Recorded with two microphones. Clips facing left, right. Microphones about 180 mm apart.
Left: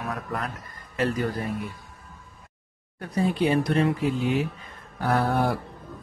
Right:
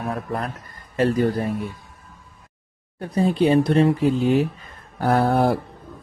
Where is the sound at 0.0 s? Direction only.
30° right (ahead or behind).